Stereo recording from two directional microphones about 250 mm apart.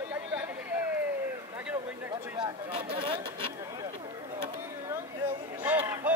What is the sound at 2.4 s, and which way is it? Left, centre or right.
Speech, centre.